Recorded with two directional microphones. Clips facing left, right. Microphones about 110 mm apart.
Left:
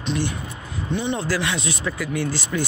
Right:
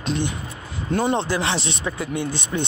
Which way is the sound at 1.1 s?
25° right (ahead or behind).